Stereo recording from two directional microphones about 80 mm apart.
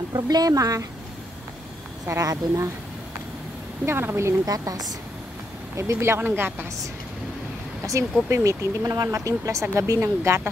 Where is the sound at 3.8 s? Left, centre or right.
Right.